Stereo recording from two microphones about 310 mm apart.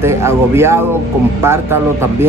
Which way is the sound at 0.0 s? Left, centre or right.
Centre.